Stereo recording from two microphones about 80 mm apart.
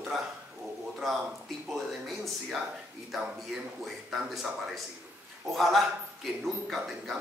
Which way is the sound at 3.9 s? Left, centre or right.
Centre.